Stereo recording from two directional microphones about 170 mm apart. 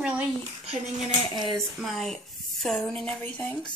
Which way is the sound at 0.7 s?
40° right (ahead or behind).